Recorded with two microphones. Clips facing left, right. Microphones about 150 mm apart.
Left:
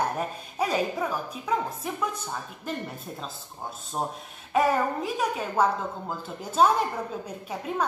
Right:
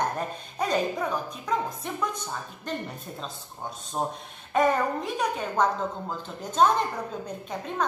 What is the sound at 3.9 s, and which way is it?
A woman's voice, centre (ahead or behind).